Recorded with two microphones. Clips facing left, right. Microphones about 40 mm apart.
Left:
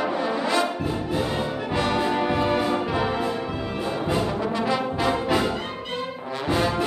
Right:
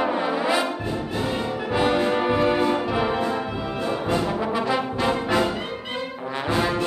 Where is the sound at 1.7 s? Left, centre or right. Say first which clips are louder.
Right 3 dB; centre.